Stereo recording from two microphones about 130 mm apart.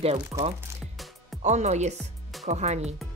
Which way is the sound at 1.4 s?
65° right (ahead or behind).